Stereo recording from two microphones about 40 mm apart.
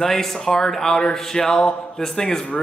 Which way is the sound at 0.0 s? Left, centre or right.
Centre.